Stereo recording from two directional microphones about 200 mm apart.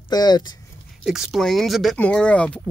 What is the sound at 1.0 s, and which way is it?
Speech, centre (ahead or behind).